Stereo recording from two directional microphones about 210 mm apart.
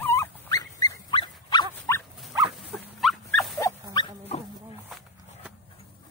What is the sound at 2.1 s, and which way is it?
Dog, centre (ahead or behind).